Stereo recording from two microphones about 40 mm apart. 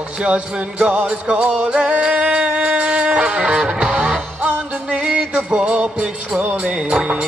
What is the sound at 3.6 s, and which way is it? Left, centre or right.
Music, right.